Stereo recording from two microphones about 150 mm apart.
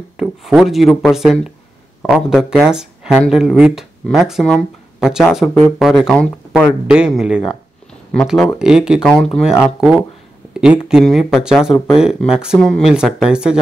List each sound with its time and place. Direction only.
0.2 s speech: 5° right (ahead or behind)
10.5 s speech: 5° right (ahead or behind)